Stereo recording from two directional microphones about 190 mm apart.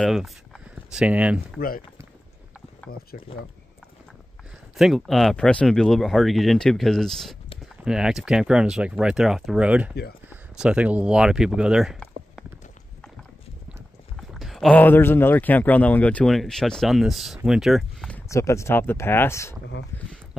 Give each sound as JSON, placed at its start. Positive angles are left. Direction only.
{"t": 0.0, "sound": "speech", "side_deg": 0}
{"t": 2.9, "sound": "speech", "side_deg": 50}
{"t": 4.7, "sound": "speech", "side_deg": 0}
{"t": 14.3, "sound": "speech", "side_deg": 0}
{"t": 17.4, "sound": "a sound", "side_deg": 0}
{"t": 18.3, "sound": "speech", "side_deg": 15}